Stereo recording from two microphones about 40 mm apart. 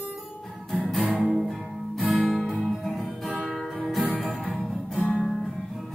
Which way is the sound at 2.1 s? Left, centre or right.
Centre.